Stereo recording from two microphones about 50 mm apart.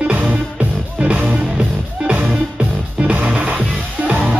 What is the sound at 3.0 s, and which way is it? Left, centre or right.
Music, right.